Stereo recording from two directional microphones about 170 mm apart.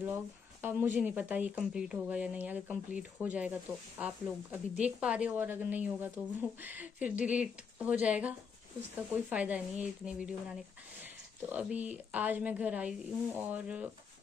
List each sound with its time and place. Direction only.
0.0 s a woman's voice: 10° right (ahead or behind)